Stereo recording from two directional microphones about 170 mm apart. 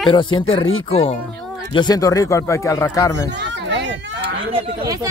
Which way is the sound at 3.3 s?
90° right.